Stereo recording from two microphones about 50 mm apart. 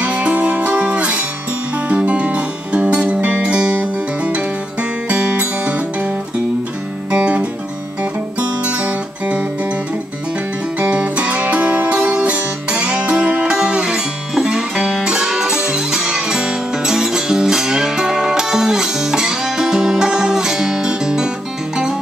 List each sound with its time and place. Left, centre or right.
0.0 s music: right
7.1 s guitar: right
10.8 s music: right